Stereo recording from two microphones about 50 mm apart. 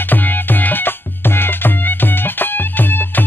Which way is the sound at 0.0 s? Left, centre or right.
Left.